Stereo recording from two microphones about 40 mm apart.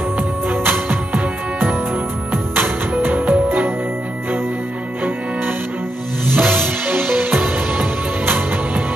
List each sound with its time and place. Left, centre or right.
0.5 s music: right
2.9 s music: right
6.3 s music: right